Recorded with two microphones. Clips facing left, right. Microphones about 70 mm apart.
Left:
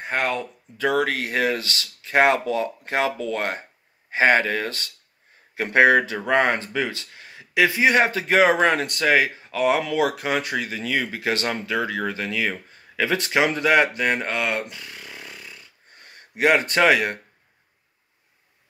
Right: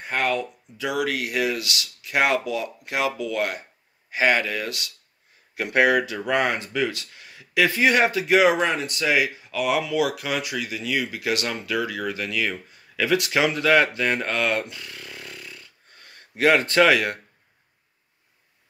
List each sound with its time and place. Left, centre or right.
0.0 s speech: left